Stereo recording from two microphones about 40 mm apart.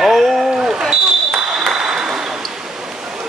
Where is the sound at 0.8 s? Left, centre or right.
Centre.